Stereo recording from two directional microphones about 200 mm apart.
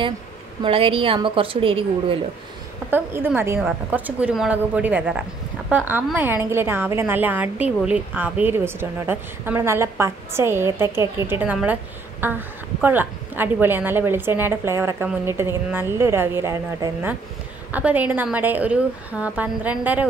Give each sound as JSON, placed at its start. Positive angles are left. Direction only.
{"t": 0.6, "sound": "a woman's voice", "side_deg": -25}
{"t": 2.9, "sound": "a woman's voice", "side_deg": -10}